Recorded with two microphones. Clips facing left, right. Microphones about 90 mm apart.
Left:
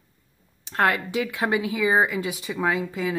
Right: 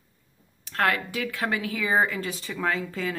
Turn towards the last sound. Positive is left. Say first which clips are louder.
# left 3 dB
turn(degrees=15)  # may be behind; listen again after turning